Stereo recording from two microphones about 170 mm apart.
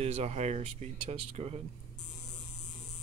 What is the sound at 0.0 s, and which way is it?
Speech, 40° right (ahead or behind).